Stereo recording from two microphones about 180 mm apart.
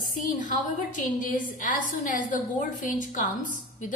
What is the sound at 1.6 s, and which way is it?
A woman's voice, 45° left (ahead or behind).